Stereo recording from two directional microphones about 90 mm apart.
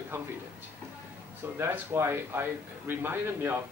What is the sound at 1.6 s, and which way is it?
A man's voice, 25° right (ahead or behind).